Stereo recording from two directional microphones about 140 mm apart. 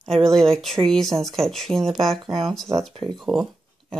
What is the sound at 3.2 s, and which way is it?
Speech, centre (ahead or behind).